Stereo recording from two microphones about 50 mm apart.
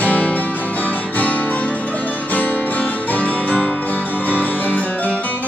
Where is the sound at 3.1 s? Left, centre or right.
Left.